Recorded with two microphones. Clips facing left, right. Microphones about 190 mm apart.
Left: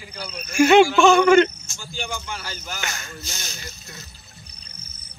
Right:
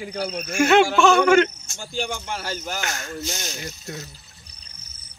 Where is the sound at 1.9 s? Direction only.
45° right (ahead or behind).